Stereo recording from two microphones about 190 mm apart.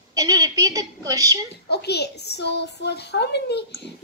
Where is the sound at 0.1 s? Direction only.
20° right (ahead or behind).